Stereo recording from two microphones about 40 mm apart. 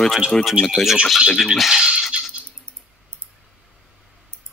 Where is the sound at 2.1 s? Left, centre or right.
Right.